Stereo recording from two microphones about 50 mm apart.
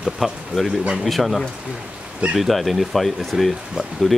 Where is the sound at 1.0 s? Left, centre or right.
Centre.